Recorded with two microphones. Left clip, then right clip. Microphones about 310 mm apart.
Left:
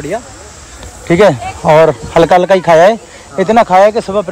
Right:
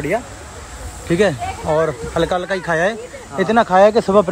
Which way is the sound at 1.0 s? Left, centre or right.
Centre.